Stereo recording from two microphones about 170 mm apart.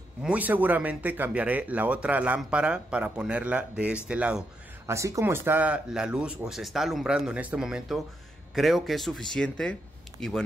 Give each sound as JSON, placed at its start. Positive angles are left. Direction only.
{"t": 0.2, "sound": "speech", "side_deg": -10}
{"t": 4.9, "sound": "speech", "side_deg": -15}